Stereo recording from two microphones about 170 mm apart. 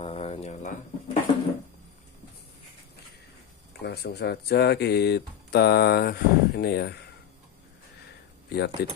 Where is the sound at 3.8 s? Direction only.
75° left (ahead or behind).